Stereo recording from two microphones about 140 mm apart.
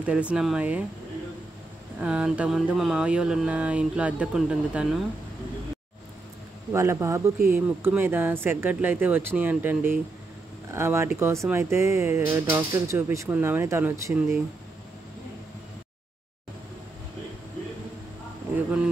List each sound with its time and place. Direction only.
0.0 s speech: 10° right (ahead or behind)
2.0 s speech: 5° right (ahead or behind)
6.7 s a man's voice: 20° right (ahead or behind)